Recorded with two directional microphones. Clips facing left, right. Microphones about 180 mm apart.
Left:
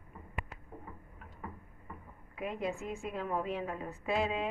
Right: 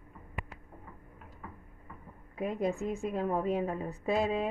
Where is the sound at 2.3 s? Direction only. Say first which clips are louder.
Right 5 dB; 40° right (ahead or behind).